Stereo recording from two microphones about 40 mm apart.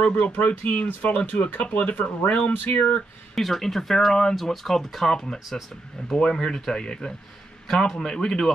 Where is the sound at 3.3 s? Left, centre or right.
Centre.